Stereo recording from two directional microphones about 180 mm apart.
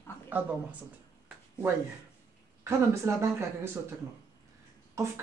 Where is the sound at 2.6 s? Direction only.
15° right (ahead or behind).